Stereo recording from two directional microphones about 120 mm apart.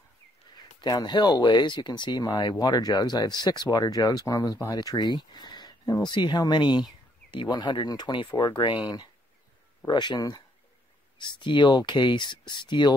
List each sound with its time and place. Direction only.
0.7 s speech: 35° left (ahead or behind)